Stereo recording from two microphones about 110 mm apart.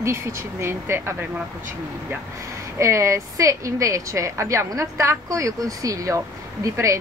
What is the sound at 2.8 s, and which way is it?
A woman's voice, 25° right (ahead or behind).